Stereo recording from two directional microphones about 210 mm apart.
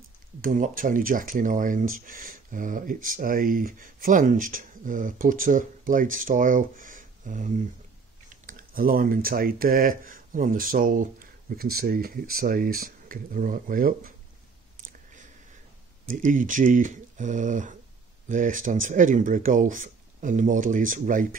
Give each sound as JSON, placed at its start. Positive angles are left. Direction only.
{"t": 0.4, "sound": "speech", "side_deg": -40}
{"t": 16.1, "sound": "speech", "side_deg": -40}